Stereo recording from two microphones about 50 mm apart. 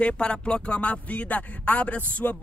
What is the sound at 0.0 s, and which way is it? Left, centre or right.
Speech, centre.